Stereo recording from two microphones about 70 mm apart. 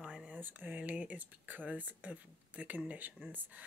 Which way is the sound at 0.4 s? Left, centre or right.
Right.